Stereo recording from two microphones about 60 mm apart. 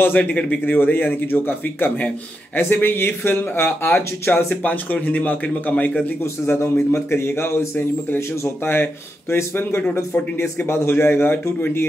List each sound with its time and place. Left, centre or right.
0.0 s a man's voice: left
0.7 s speech: left
4.9 s a man's voice: left
6.4 s a man's voice: left
9.3 s speech: left